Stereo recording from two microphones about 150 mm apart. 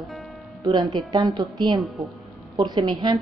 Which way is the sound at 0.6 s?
30° right (ahead or behind).